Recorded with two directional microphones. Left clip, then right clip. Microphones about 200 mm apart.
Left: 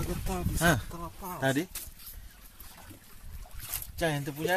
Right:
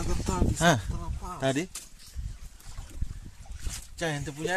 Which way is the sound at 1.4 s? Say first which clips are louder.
Right 1 dB; 20° right (ahead or behind).